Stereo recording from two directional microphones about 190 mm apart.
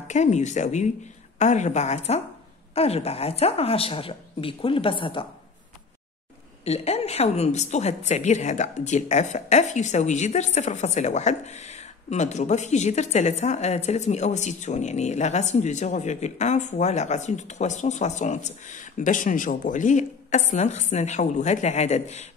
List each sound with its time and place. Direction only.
0.1 s a woman's voice: 40° left (ahead or behind)
6.6 s a woman's voice: 35° left (ahead or behind)